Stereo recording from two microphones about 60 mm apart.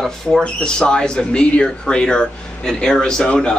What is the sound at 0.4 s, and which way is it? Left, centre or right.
Speech, centre.